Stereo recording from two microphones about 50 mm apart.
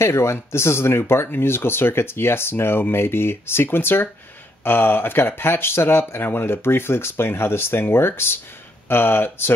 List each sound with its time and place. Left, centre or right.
0.0 s speech: left
8.8 s speech: left